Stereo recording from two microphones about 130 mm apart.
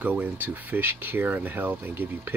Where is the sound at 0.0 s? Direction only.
15° right (ahead or behind).